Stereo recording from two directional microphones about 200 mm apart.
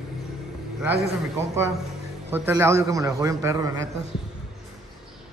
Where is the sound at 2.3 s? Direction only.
10° right (ahead or behind).